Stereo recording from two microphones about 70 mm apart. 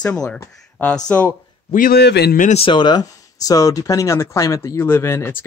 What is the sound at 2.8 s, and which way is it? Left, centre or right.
Speech, left.